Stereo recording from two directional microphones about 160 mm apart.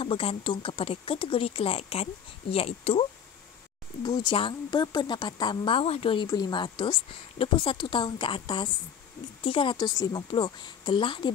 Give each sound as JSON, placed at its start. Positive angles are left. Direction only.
{"t": 0.0, "sound": "a woman's voice", "side_deg": 35}
{"t": 4.0, "sound": "speech", "side_deg": 25}
{"t": 6.2, "sound": "a woman's voice", "side_deg": 25}